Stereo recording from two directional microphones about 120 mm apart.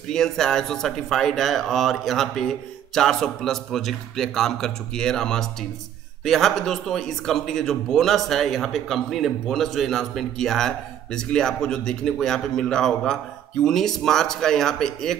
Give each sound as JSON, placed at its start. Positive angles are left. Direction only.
{"t": 0.1, "sound": "speech", "side_deg": 5}